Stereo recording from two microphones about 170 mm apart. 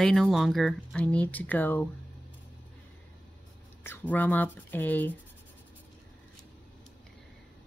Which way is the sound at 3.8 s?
10° left (ahead or behind).